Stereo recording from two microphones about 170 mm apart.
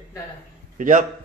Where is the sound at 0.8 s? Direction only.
50° right (ahead or behind).